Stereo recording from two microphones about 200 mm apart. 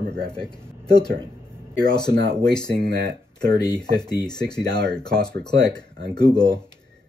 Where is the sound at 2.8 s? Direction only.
55° right (ahead or behind).